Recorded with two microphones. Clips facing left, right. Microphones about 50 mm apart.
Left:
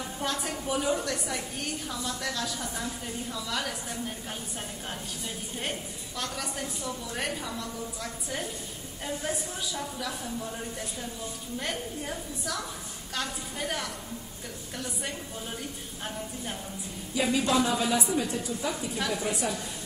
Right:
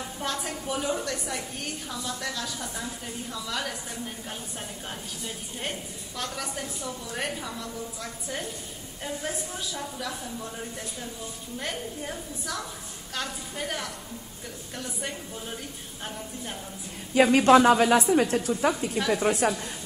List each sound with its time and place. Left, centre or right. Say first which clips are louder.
0.2 s a woman's voice: even; centre
5.6 s a woman's voice: right 1 dB; centre
17.1 s a woman's voice: right 9 dB; right